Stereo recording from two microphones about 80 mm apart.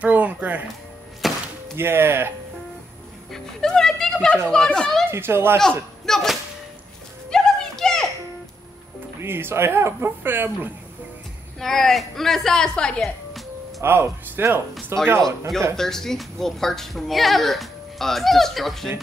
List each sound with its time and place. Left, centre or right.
0.0 s music: centre
1.2 s a sound: centre
1.8 s speech: right
3.3 s music: centre
4.5 s a child's voice: centre
5.1 s speech: right
6.0 s whip: centre
7.2 s children playing: centre
9.2 s speech: right
11.6 s a woman's voice: centre
13.7 s speech: right
15.7 s a woman's voice: centre